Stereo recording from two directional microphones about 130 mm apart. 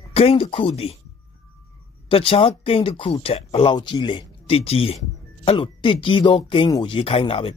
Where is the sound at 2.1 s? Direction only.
45° left (ahead or behind).